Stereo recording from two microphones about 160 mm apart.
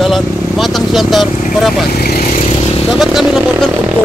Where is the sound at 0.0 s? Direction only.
Centre (ahead or behind).